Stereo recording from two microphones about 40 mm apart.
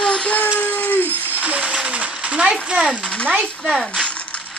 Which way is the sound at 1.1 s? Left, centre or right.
Right.